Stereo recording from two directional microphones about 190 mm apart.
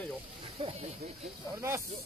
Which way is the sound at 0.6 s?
35° right (ahead or behind).